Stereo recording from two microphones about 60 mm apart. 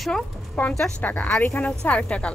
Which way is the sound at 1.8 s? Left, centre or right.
Left.